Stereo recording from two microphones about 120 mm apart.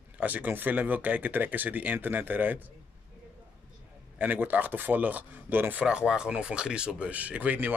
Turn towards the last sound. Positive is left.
turn(degrees=-15)  # may be behind; listen again after turning